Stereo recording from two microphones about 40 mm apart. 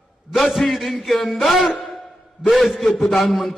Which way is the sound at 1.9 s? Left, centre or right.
Centre.